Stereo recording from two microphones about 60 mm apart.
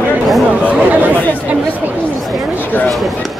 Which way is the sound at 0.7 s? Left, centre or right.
Right.